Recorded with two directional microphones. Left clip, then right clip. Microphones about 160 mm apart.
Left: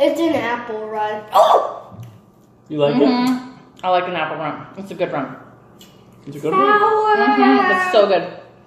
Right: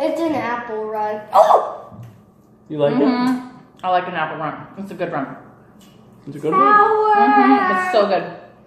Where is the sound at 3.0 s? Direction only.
30° left (ahead or behind).